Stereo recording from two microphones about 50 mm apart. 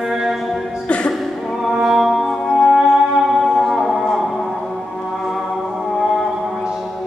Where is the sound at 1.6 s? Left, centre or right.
Centre.